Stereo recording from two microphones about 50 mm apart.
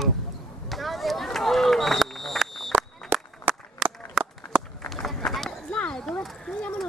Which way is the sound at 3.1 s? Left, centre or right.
Right.